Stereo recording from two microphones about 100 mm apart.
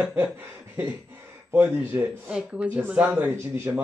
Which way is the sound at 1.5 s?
15° right (ahead or behind).